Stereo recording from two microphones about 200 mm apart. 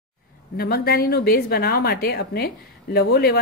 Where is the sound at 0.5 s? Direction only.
50° left (ahead or behind).